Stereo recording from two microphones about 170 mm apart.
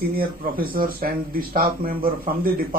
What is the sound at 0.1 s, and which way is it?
A man's voice, 60° right (ahead or behind).